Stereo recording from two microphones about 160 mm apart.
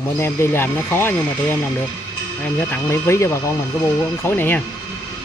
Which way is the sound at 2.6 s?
15° left (ahead or behind).